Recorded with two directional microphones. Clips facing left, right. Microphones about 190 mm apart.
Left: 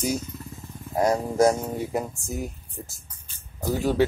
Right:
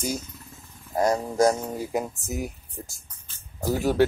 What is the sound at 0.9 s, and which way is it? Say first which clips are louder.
Speech: left 1 dB; 10° left (ahead or behind).